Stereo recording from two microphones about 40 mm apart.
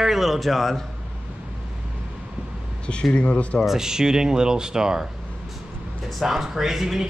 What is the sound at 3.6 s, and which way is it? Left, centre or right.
Speech, centre.